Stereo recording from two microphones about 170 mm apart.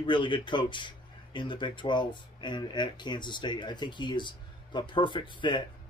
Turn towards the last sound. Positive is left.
turn(degrees=30)  # may be behind; listen again after turning